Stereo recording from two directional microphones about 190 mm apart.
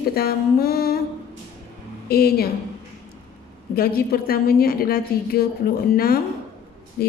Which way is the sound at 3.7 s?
50° left (ahead or behind).